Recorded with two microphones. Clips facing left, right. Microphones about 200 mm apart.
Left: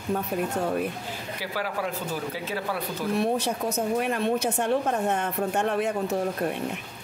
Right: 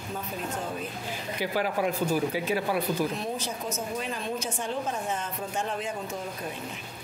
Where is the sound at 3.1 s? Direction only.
65° left (ahead or behind).